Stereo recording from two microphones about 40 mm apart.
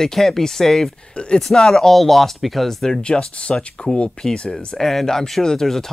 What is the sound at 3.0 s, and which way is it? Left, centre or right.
Speech, left.